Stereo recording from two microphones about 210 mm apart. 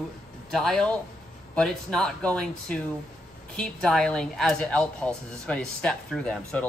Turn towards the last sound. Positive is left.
turn(degrees=5)  # may be behind; listen again after turning